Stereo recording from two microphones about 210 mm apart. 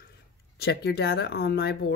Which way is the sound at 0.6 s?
50° left (ahead or behind).